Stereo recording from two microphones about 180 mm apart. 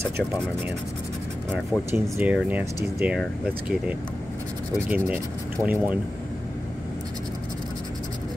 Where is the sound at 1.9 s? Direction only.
10° right (ahead or behind).